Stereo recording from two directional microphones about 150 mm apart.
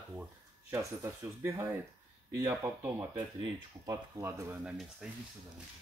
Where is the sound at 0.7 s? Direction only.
15° right (ahead or behind).